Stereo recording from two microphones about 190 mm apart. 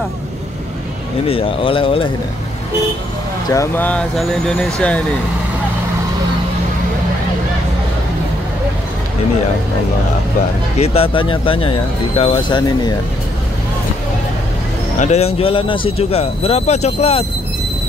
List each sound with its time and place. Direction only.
1.2 s speech: 30° left (ahead or behind)
3.4 s speech: 15° left (ahead or behind)
10.8 s speech: 30° left (ahead or behind)
15.0 s speech: 35° left (ahead or behind)